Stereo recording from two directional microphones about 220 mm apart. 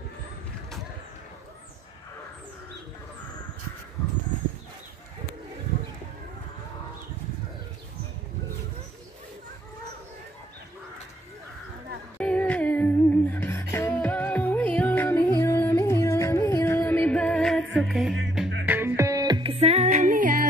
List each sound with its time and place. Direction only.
12.2 s humming: 5° left (ahead or behind)
17.7 s music: centre (ahead or behind); by 20.4 s 35° right (ahead or behind)